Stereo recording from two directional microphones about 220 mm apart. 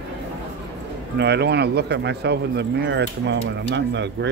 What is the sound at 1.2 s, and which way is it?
Speech, 50° right (ahead or behind).